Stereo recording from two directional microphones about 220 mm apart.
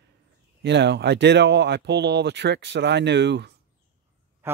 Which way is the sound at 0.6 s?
50° right (ahead or behind).